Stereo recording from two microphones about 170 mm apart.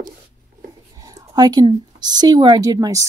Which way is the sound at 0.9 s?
20° right (ahead or behind).